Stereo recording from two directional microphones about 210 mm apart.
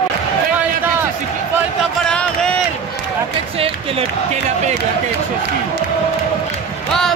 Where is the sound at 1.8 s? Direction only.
5° left (ahead or behind).